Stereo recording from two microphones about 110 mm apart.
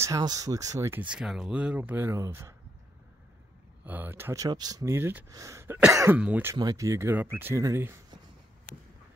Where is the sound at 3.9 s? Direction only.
20° right (ahead or behind).